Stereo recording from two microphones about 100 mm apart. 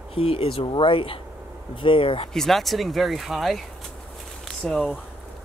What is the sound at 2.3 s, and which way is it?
Speech, 5° left (ahead or behind).